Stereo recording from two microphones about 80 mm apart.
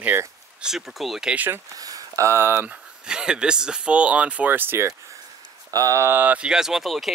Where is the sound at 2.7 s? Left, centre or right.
Centre; by 4.9 s right.